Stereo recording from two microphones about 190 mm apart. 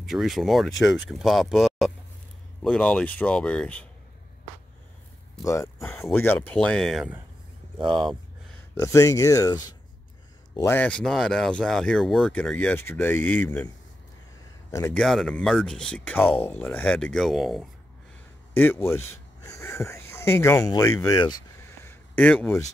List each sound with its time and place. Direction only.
0.0 s speech: centre (ahead or behind)
5.4 s speech: 15° left (ahead or behind); by 7.2 s centre (ahead or behind)
7.8 s speech: 25° right (ahead or behind)
8.7 s speech: 15° left (ahead or behind)
14.7 s speech: 15° left (ahead or behind)
15.0 s speech: centre (ahead or behind)
18.5 s speech: 10° left (ahead or behind)
19.4 s a sound: 15° left (ahead or behind)